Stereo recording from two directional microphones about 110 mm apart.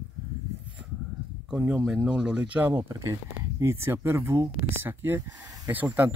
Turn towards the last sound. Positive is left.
turn(degrees=-15)  # may be behind; listen again after turning